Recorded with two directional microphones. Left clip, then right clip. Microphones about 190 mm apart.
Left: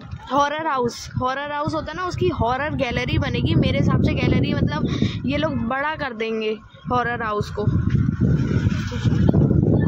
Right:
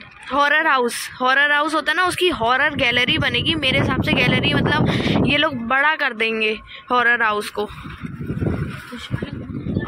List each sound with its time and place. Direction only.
0.3 s speech: 5° left (ahead or behind)
2.4 s speech: 5° left (ahead or behind)